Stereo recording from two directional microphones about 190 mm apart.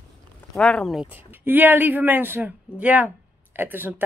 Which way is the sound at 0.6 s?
5° left (ahead or behind).